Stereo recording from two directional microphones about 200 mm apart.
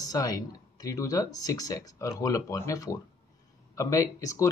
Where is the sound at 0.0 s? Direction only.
20° left (ahead or behind).